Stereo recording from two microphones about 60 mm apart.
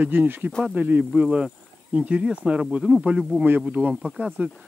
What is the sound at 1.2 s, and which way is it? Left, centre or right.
Speech, centre.